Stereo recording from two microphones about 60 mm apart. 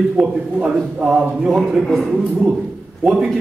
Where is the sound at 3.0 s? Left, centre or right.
Centre.